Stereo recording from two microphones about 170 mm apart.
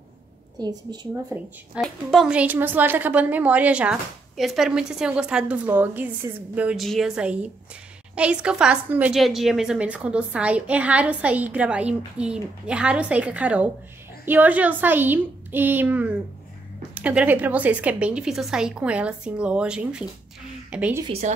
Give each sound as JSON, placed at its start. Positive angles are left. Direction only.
{"t": 0.9, "sound": "speech", "side_deg": -25}
{"t": 1.3, "sound": "a woman's voice", "side_deg": -15}
{"t": 1.8, "sound": "a woman's voice", "side_deg": 0}